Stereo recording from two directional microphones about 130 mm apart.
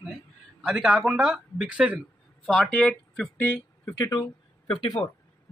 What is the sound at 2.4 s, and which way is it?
Speech, 5° left (ahead or behind).